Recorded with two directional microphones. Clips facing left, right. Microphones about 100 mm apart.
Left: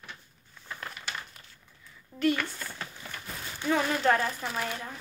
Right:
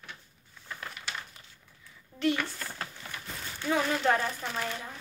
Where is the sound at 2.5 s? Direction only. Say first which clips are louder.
Right 1 dB; 50° right (ahead or behind).